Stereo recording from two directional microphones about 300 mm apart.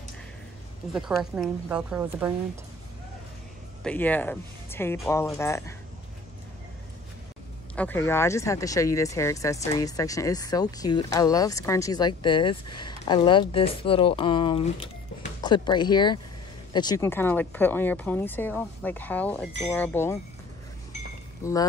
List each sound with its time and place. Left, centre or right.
1.3 s a woman's voice: centre
3.8 s speech: centre
7.7 s speech: centre
21.4 s speech: centre